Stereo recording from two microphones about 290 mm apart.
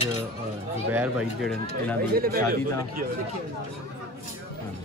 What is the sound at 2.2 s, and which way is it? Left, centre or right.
Speech, right.